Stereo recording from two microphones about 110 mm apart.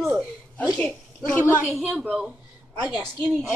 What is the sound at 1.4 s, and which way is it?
A woman's voice, 15° right (ahead or behind).